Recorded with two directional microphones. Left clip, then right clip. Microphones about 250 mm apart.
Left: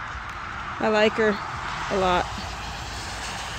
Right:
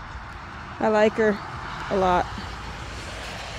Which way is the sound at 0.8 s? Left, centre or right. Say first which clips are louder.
Right 1 dB; centre.